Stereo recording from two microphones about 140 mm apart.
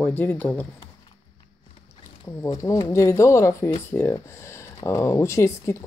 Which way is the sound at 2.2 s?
25° left (ahead or behind).